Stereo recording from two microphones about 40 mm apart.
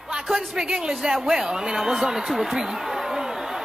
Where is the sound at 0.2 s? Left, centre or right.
Centre.